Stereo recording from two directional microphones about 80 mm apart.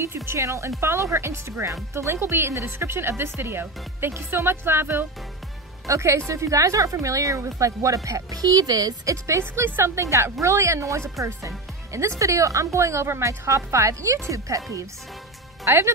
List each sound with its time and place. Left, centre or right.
0.0 s a woman's voice: right
9.4 s speech: right